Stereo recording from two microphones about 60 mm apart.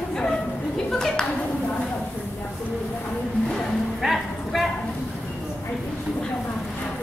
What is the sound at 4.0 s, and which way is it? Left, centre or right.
Music, centre.